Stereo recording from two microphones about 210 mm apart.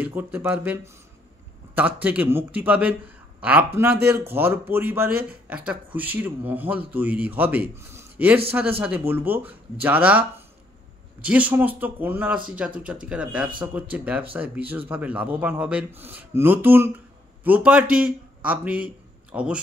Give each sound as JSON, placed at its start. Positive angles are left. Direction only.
{"t": 0.0, "sound": "speech", "side_deg": -10}
{"t": 1.8, "sound": "a man's voice", "side_deg": -10}
{"t": 11.2, "sound": "a man's voice", "side_deg": -5}